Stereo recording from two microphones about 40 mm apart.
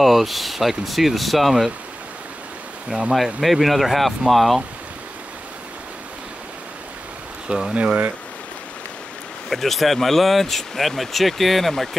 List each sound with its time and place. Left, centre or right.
0.0 s speech: centre
2.9 s speech: right
3.3 s speech: centre
7.4 s speech: centre
7.7 s speech: right
9.5 s speech: centre